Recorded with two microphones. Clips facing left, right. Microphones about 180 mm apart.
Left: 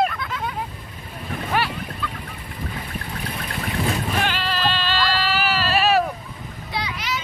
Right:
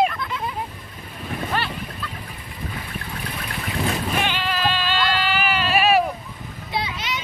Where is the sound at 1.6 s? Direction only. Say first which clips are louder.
Left 5 dB; 10° left (ahead or behind).